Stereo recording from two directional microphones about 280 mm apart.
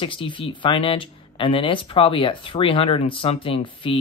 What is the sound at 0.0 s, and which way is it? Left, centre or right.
Speech, centre.